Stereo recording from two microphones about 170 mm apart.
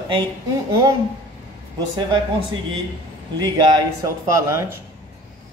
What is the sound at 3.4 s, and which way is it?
A man's voice, 20° right (ahead or behind).